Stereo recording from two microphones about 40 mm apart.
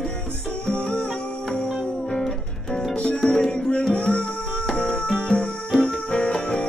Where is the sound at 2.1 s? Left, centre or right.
Centre.